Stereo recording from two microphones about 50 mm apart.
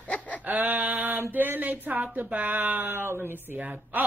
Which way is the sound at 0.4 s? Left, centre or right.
Right.